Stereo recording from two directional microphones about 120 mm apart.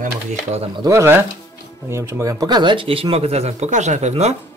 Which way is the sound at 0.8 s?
20° right (ahead or behind).